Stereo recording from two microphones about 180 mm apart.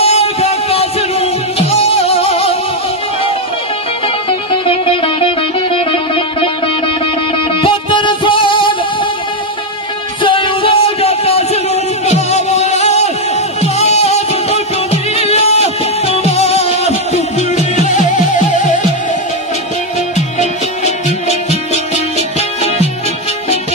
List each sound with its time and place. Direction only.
0.0 s music: 35° left (ahead or behind)
4.3 s music: 30° left (ahead or behind)
7.6 s music: 25° left (ahead or behind)
10.2 s music: 30° left (ahead or behind)
20.3 s music: 40° left (ahead or behind)